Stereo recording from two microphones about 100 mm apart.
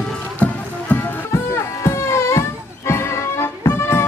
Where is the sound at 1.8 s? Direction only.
30° left (ahead or behind).